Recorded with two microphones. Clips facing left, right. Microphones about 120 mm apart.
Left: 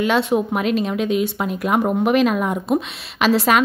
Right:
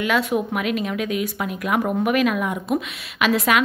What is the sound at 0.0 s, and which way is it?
Speech, 30° left (ahead or behind).